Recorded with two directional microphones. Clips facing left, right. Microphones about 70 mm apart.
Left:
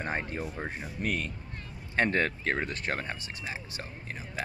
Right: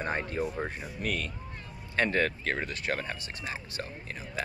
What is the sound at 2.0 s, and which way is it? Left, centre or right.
Speech, left.